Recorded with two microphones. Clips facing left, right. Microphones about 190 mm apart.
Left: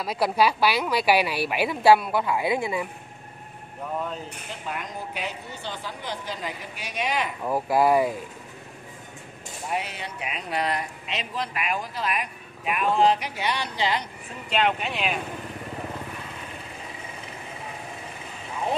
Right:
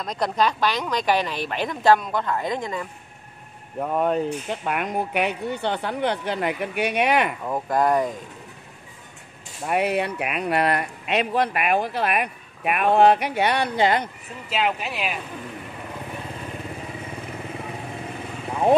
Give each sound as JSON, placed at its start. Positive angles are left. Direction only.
{"t": 0.0, "sound": "a woman's voice", "side_deg": 5}
{"t": 3.9, "sound": "speech", "side_deg": -65}
{"t": 7.4, "sound": "a woman's voice", "side_deg": 5}
{"t": 9.7, "sound": "speech", "side_deg": -60}
{"t": 14.5, "sound": "speech", "side_deg": -5}